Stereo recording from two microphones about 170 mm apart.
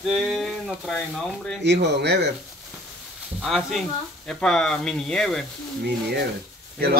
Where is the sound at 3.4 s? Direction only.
Centre (ahead or behind).